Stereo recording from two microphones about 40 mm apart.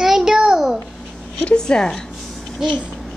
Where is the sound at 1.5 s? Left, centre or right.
Left.